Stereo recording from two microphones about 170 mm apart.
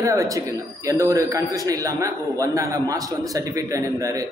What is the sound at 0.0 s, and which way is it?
Speech, 20° right (ahead or behind).